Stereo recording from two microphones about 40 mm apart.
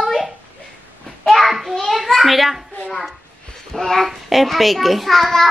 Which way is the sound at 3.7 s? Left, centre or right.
Centre.